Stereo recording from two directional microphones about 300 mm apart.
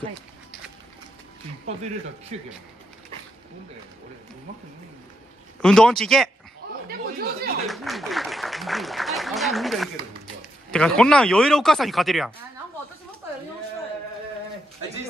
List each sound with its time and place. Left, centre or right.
2.3 s speech: right
5.6 s speech: centre
6.9 s speech: right
7.6 s speech: centre